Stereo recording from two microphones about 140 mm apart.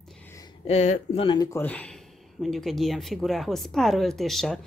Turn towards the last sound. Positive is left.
turn(degrees=0)  # may be behind; listen again after turning